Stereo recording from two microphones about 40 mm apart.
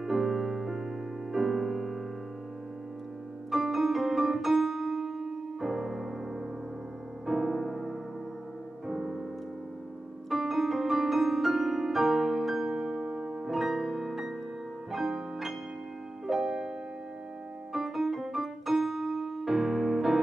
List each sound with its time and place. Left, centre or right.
0.0 s music: centre
3.4 s piano: centre
7.2 s piano: centre
8.8 s music: centre
10.3 s music: centre
17.7 s piano: centre